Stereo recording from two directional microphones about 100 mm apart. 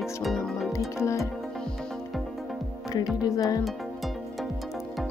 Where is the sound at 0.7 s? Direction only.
30° left (ahead or behind).